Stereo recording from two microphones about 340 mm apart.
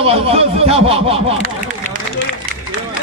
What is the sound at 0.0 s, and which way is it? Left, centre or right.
Speech, centre.